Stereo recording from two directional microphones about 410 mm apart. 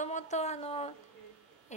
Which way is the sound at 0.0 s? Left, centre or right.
Centre.